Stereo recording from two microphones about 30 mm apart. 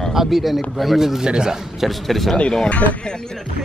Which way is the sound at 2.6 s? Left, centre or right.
Left.